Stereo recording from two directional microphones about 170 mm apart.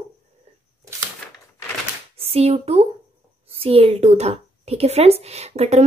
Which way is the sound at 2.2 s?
35° right (ahead or behind).